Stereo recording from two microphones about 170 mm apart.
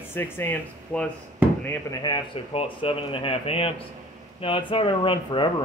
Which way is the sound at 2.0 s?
30° left (ahead or behind).